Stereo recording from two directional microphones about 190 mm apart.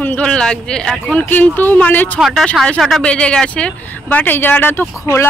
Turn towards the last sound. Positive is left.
turn(degrees=15)  # may be behind; listen again after turning